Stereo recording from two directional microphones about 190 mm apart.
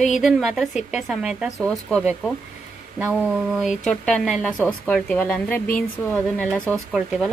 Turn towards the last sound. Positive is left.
turn(degrees=0)  # may be behind; listen again after turning